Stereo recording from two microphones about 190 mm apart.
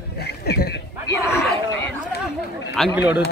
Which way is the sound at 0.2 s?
60° left (ahead or behind).